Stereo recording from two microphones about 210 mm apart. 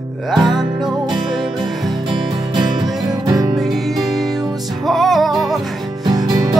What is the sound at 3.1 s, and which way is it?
Music, 15° right (ahead or behind).